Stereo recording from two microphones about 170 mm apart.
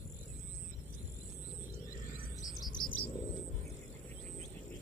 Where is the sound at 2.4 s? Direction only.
25° left (ahead or behind).